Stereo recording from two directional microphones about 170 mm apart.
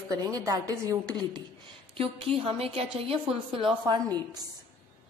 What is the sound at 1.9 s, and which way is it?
A woman's voice, 35° right (ahead or behind).